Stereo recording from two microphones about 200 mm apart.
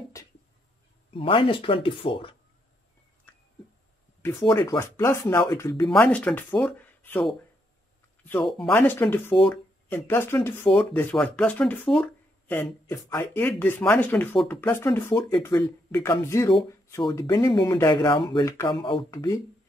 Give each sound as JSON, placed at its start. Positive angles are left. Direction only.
{"t": 1.1, "sound": "speech", "side_deg": 25}
{"t": 4.5, "sound": "speech", "side_deg": 25}
{"t": 4.7, "sound": "speech", "side_deg": 15}
{"t": 5.9, "sound": "speech", "side_deg": 5}